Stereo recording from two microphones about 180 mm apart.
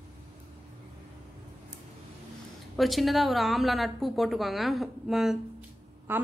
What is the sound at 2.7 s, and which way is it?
A woman's voice, centre (ahead or behind).